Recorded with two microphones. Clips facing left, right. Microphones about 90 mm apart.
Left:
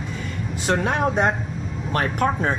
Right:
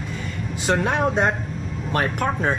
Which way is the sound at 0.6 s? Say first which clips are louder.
Right 1 dB; centre (ahead or behind).